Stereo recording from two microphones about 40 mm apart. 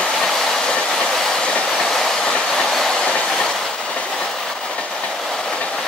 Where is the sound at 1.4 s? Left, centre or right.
Left.